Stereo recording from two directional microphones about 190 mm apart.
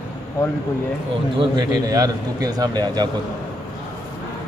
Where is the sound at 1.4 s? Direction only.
20° right (ahead or behind).